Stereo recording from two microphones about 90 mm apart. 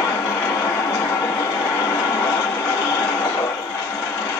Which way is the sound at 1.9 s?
30° left (ahead or behind).